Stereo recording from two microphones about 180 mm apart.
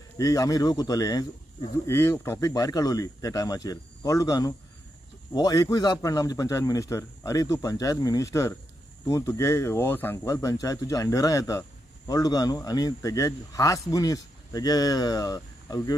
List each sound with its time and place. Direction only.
0.2 s a man's voice: 20° left (ahead or behind)